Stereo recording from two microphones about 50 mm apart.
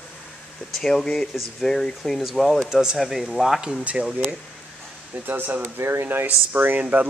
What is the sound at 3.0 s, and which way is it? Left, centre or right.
Speech, centre.